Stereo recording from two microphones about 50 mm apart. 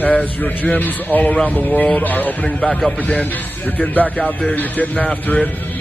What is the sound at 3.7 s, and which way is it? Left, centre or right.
Speech, left.